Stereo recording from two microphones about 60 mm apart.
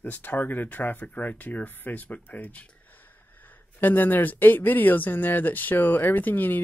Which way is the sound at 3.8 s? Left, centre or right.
Left.